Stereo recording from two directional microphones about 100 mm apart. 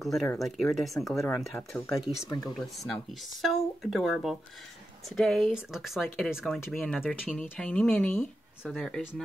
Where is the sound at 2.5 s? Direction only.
Centre (ahead or behind).